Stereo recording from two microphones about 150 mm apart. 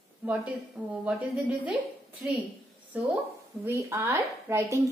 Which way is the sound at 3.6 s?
15° right (ahead or behind).